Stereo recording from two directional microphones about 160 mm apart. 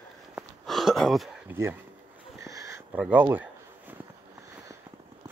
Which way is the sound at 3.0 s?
10° right (ahead or behind).